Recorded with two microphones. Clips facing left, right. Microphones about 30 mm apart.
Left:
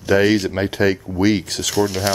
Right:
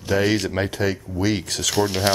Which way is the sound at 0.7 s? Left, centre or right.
Left.